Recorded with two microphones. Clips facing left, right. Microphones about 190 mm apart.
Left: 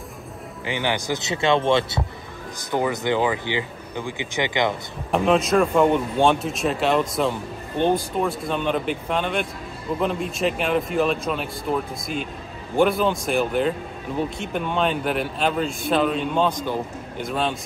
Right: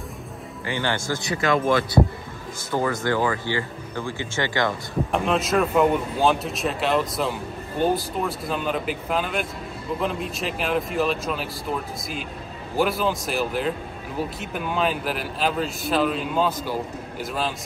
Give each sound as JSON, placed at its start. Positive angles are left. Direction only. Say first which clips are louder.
{"t": 0.7, "sound": "speech", "louder": "left 1 dB", "side_deg": 15}
{"t": 5.1, "sound": "speech", "louder": "left 4 dB", "side_deg": 0}